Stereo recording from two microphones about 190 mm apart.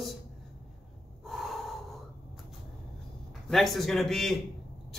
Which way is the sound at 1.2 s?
Centre (ahead or behind).